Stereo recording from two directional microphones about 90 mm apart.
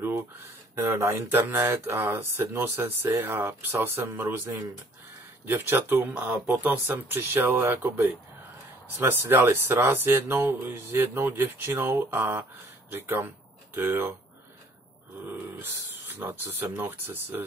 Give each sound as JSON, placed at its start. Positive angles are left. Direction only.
{"t": 0.7, "sound": "speech", "side_deg": -30}
{"t": 15.2, "sound": "speech", "side_deg": -25}